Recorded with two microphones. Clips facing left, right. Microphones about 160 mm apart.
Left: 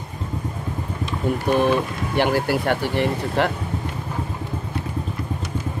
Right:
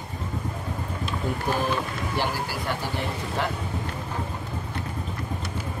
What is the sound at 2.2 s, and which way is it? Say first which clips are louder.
Speech: left 10 dB; 65° left (ahead or behind).